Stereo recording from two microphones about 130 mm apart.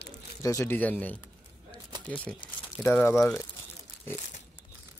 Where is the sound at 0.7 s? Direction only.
10° left (ahead or behind).